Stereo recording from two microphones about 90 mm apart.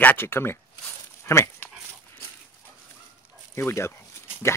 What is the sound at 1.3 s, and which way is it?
Dog, 25° left (ahead or behind).